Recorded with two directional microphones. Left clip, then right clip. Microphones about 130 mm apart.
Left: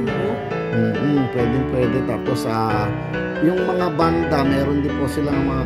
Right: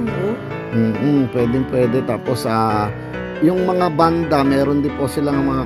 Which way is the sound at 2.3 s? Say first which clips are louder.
Right 4 dB; 25° right (ahead or behind).